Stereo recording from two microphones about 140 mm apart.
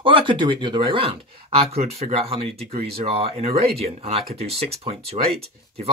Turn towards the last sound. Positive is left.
turn(degrees=-45)  # may be behind; listen again after turning